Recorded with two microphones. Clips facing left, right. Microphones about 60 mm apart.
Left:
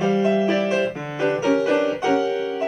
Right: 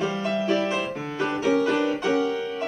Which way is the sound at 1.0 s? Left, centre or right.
Centre.